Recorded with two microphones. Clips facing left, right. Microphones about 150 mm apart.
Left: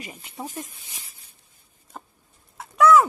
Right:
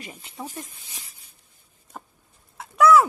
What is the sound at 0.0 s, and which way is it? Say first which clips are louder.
Speech: left 1 dB; 10° left (ahead or behind).